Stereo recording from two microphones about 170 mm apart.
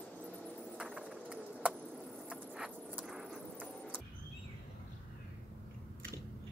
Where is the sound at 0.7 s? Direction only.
5° right (ahead or behind).